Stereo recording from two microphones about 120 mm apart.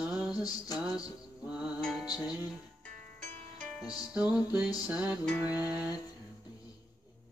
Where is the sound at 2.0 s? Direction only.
30° left (ahead or behind).